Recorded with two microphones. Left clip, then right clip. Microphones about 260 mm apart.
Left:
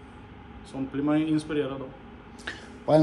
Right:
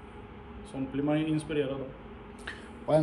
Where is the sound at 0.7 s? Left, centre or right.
Centre.